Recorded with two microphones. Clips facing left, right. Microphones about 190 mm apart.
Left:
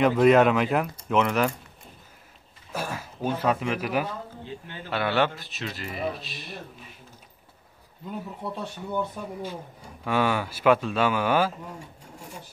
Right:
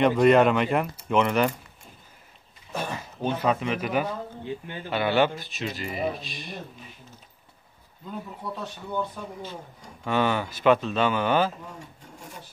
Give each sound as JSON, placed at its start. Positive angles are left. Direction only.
{"t": 0.0, "sound": "speech", "side_deg": 0}
{"t": 2.7, "sound": "speech", "side_deg": 5}
{"t": 4.5, "sound": "speech", "side_deg": -15}
{"t": 4.9, "sound": "speech", "side_deg": 0}
{"t": 8.9, "sound": "speech", "side_deg": 10}